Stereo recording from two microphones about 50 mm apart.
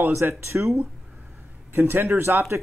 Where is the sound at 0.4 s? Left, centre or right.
Right.